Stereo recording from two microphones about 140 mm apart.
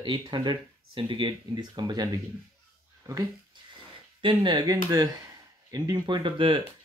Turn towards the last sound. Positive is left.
turn(degrees=-35)  # may be behind; listen again after turning